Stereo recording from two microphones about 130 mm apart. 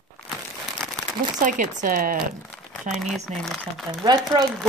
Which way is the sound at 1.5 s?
90° right.